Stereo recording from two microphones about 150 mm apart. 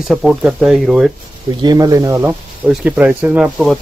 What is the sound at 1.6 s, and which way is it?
Speech, 25° right (ahead or behind).